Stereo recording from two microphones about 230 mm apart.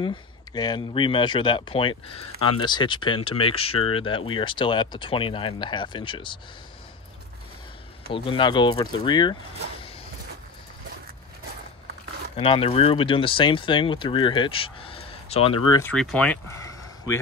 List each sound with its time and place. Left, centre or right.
0.0 s speech: centre
8.1 s speech: left
12.4 s speech: left
15.7 s speech: centre